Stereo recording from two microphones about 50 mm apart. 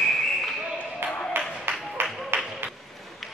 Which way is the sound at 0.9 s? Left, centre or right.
Right.